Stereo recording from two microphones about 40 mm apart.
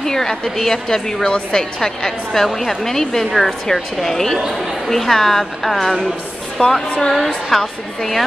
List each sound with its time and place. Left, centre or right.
0.0 s a woman's voice: centre
6.6 s speech: left
7.0 s a woman's voice: centre